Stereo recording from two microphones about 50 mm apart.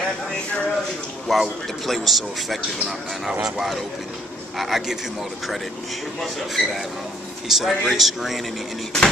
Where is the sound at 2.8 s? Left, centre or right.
Centre.